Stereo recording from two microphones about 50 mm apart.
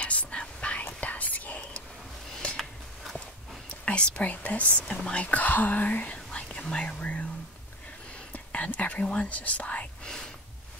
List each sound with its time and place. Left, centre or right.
0.0 s whispering: left
2.5 s a sound: centre
3.6 s speech: left
8.3 s whispering: left
9.1 s speech: left
10.0 s gasp: centre